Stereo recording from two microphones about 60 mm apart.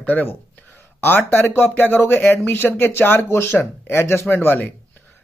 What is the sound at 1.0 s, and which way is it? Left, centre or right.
Speech, left.